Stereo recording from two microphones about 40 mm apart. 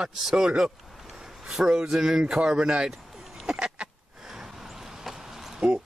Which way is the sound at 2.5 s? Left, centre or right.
Right.